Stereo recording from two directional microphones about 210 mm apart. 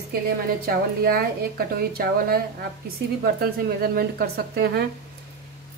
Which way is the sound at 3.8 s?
45° right (ahead or behind).